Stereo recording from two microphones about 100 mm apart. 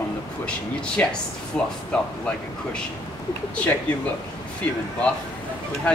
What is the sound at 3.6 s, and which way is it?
Speech, 15° left (ahead or behind).